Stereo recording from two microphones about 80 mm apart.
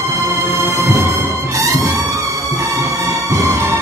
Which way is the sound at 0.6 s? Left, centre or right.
Right.